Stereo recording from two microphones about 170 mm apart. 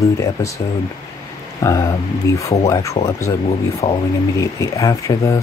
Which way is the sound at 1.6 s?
20° left (ahead or behind).